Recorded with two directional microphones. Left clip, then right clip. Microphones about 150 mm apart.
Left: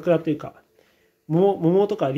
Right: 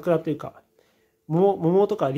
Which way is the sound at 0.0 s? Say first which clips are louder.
Left 2 dB; 15° right (ahead or behind).